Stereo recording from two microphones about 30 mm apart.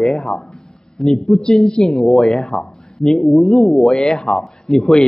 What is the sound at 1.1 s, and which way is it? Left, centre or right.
Speech, centre.